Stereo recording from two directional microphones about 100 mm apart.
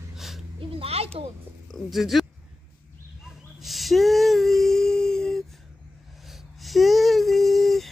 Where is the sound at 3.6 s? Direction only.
Centre (ahead or behind).